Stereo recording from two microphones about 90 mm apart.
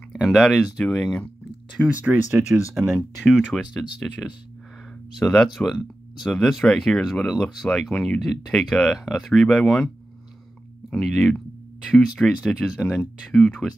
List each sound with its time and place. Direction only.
0.2 s speech: centre (ahead or behind)
1.9 s speech: 15° right (ahead or behind)
3.3 s speech: centre (ahead or behind)
11.0 s speech: centre (ahead or behind)